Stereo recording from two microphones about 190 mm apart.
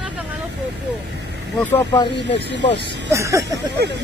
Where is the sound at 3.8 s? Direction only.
55° right (ahead or behind).